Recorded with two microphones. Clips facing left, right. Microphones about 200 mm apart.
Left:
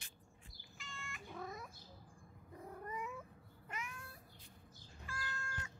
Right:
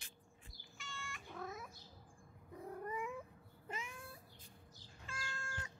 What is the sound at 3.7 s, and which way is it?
Cat, 25° right (ahead or behind).